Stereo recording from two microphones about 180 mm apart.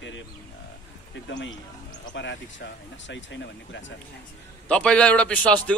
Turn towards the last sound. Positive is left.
turn(degrees=5)  # may be behind; listen again after turning